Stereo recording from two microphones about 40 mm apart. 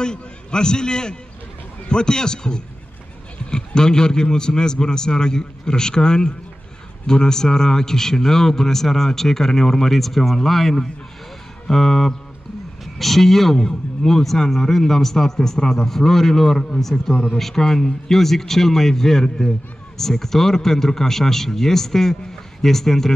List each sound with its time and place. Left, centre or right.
0.0 s a man's voice: centre